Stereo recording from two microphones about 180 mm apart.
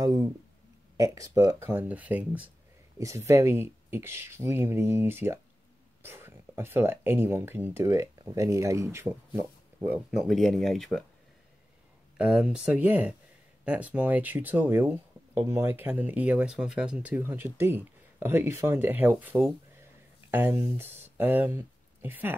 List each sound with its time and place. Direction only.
0.0 s a sound: 20° right (ahead or behind)
0.9 s speech: 20° right (ahead or behind); by 11.1 s centre (ahead or behind)
12.2 s speech: 5° right (ahead or behind)